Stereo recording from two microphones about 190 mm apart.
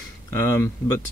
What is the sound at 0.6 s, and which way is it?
Speech, 15° left (ahead or behind).